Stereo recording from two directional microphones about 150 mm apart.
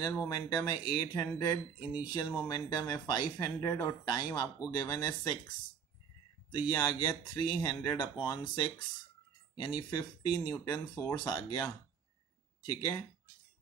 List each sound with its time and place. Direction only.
0.1 s speech: 25° left (ahead or behind)
6.5 s speech: 25° left (ahead or behind)